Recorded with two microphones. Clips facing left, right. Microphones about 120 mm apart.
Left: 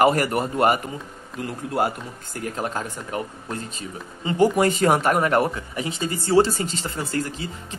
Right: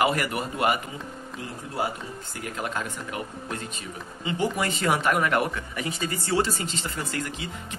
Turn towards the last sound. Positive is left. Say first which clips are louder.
# left 5 dB
turn(degrees=35)  # may be behind; listen again after turning